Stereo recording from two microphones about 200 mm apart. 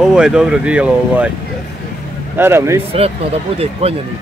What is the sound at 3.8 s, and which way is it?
Speech, 30° right (ahead or behind).